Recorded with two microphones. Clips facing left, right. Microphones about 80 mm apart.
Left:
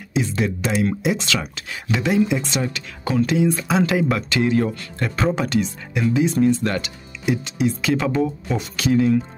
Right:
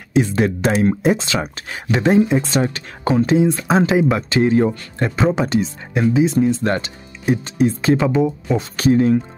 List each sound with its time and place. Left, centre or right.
0.1 s speech: right
1.1 s speech: right
3.8 s speech: right
6.7 s speech: right
8.0 s speech: centre
8.7 s speech: right